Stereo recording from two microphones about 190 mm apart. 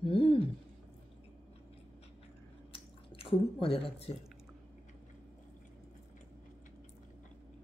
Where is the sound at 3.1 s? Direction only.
30° left (ahead or behind).